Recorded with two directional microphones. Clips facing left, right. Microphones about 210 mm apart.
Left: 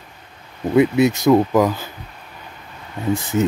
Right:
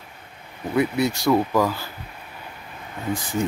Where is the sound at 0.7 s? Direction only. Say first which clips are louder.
Left 7 dB; 20° left (ahead or behind).